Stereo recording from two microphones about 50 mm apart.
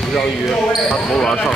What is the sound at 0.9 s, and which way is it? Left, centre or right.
Speech, centre.